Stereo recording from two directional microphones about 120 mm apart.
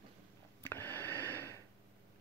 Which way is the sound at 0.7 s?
15° left (ahead or behind).